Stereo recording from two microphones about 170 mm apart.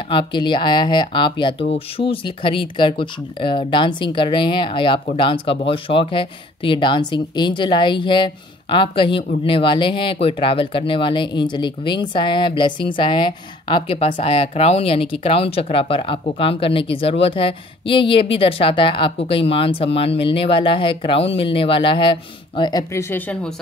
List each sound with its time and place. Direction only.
0.1 s speech: 30° left (ahead or behind); by 23.5 s 10° left (ahead or behind)